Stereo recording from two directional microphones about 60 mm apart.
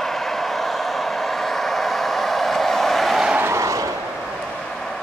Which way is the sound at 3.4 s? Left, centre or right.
Right.